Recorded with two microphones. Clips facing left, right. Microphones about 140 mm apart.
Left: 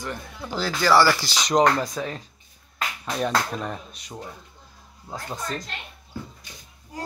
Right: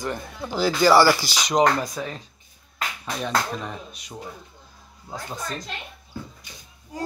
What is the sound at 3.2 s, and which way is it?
Speech, centre (ahead or behind).